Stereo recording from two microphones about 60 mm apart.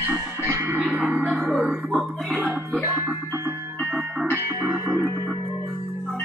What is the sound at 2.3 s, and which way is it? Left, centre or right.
Music, right.